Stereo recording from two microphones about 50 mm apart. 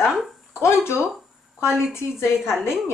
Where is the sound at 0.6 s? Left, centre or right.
Left.